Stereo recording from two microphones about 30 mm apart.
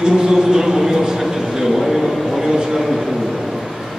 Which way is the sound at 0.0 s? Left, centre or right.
Right.